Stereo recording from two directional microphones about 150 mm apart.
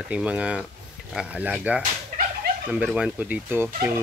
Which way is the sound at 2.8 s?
10° right (ahead or behind).